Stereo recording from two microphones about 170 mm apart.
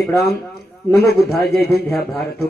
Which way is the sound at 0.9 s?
65° left (ahead or behind).